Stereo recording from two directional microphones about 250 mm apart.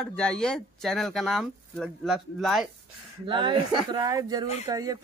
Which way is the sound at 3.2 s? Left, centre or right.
Centre.